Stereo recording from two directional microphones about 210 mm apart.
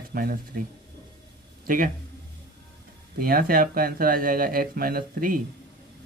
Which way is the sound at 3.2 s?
45° right (ahead or behind).